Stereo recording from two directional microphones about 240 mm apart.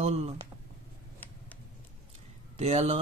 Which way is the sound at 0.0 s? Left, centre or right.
Right.